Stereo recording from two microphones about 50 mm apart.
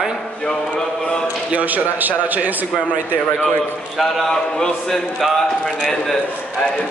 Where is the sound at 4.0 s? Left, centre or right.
Centre.